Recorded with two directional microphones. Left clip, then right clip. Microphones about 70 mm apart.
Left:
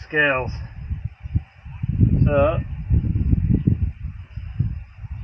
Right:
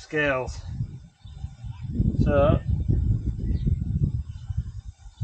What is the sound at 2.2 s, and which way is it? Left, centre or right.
Speech, right.